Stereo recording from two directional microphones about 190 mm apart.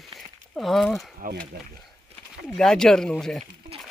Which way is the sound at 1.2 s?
45° right (ahead or behind).